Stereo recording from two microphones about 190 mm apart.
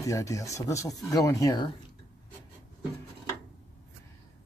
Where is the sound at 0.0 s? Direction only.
15° left (ahead or behind).